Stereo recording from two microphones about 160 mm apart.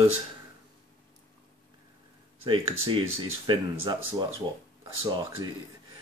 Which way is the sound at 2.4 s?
35° right (ahead or behind).